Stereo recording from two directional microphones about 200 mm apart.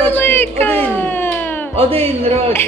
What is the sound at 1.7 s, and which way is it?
Speech, 30° right (ahead or behind).